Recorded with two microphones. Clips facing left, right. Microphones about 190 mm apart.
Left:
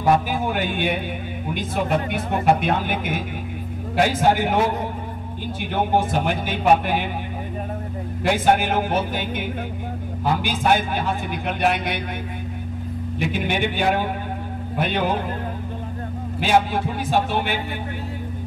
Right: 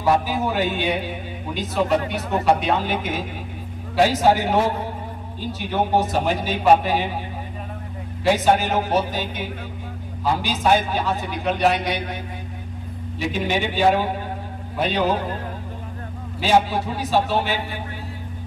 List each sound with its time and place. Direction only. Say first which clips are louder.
0.0 s a man's voice: even; 55° left (ahead or behind)
8.2 s speech: right 1 dB; 55° left (ahead or behind)
13.2 s a man's voice: even; 55° left (ahead or behind)
16.3 s speech: right 1 dB; 55° left (ahead or behind)